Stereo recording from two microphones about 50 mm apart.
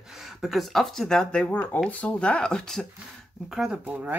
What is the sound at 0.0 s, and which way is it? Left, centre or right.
Speech, centre.